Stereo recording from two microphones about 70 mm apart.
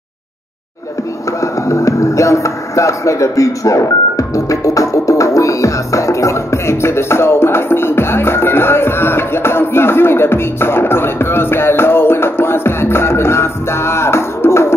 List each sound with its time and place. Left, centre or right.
1.4 s music: left